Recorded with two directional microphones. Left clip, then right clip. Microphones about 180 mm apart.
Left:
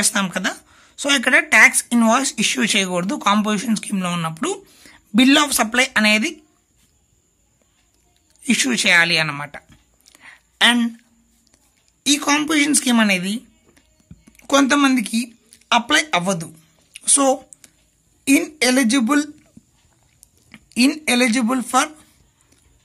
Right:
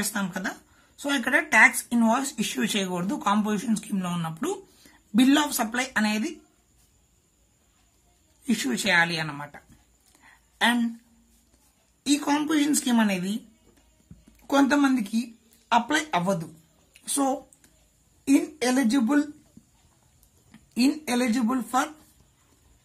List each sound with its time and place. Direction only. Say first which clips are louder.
0.0 s speech: left 10 dB; 25° left (ahead or behind)
8.5 s speech: left 9 dB; 20° left (ahead or behind)
10.1 s a sound: left 10 dB; 30° left (ahead or behind)
12.0 s speech: left 7 dB; 20° left (ahead or behind)
16.9 s a sound: left 9 dB; 25° left (ahead or behind)
18.2 s speech: left 7 dB; 20° left (ahead or behind)
20.5 s speech: left 7 dB; 25° left (ahead or behind)